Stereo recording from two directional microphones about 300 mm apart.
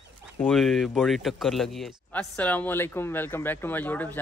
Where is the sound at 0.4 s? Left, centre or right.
Centre.